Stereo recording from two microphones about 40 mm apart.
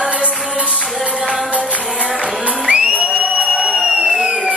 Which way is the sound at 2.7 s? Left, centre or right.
Right.